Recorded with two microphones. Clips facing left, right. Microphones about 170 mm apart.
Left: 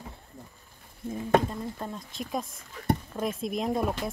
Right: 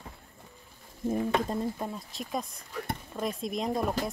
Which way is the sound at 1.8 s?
5° right (ahead or behind).